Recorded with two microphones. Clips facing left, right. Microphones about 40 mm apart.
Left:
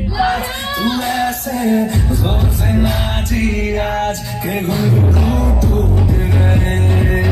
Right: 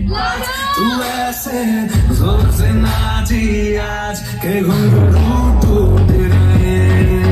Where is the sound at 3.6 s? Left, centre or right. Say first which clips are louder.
Even; left.